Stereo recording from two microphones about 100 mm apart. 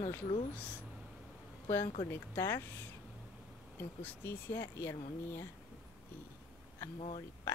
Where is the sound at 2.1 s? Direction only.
25° left (ahead or behind).